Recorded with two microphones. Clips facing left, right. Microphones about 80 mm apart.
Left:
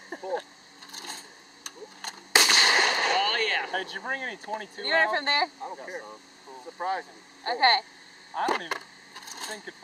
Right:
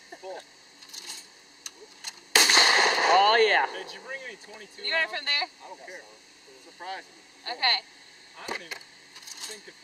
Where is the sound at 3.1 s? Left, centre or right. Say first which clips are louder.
Right 7 dB; right.